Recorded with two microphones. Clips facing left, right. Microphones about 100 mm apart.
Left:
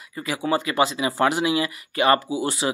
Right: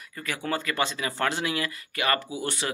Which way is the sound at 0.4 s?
15° left (ahead or behind).